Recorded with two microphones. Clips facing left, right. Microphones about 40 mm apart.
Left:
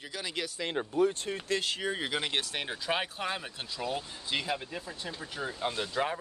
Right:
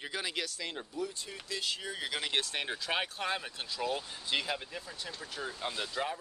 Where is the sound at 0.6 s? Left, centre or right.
Left.